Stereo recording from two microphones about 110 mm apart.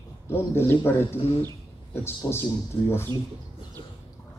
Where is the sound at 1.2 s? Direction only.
60° left (ahead or behind).